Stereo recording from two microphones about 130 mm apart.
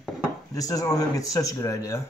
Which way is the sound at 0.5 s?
25° left (ahead or behind).